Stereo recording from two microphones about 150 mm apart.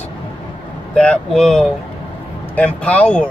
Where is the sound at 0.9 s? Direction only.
5° left (ahead or behind).